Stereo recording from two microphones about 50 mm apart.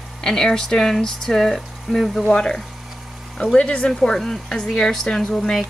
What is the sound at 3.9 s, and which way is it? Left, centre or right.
Speech, centre.